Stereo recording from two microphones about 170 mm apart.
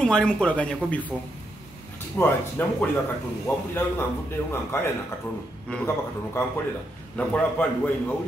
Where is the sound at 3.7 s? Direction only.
15° left (ahead or behind).